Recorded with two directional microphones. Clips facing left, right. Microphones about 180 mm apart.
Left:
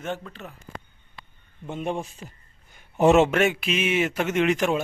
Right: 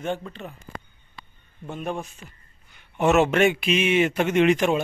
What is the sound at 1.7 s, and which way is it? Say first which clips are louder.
Speech: left 1 dB; 25° left (ahead or behind).